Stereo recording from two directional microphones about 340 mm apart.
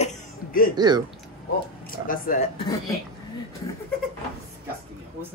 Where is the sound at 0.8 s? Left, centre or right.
Centre.